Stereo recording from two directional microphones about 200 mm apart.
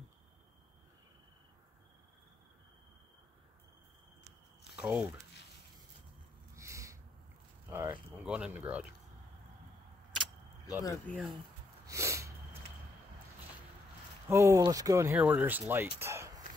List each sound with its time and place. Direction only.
4.7 s speech: 10° right (ahead or behind)
6.5 s a sound: 15° right (ahead or behind)
10.8 s speech: 15° left (ahead or behind)
11.9 s sneeze: 15° right (ahead or behind)
14.3 s speech: 15° right (ahead or behind)